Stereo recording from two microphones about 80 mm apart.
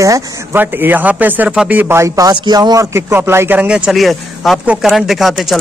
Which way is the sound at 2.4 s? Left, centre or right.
Right.